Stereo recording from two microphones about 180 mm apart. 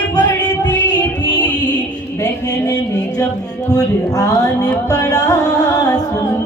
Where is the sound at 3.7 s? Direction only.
20° left (ahead or behind).